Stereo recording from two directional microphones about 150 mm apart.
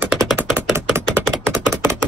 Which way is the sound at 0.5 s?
15° right (ahead or behind).